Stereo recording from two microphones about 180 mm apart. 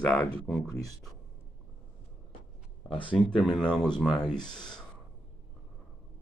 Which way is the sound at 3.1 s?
5° left (ahead or behind).